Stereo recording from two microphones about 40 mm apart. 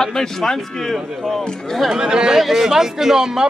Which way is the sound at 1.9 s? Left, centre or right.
Right.